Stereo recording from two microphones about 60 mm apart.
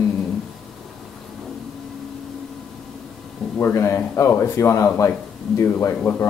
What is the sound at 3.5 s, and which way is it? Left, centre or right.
Speech, left.